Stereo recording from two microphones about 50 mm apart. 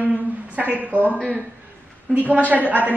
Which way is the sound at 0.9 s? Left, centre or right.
Right.